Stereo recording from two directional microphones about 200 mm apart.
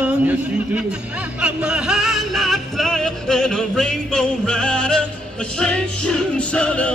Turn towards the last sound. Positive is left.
turn(degrees=5)  # may be behind; listen again after turning